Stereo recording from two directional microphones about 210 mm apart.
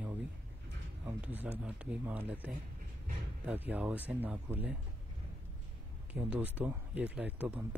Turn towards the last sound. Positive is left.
turn(degrees=-5)  # may be behind; listen again after turning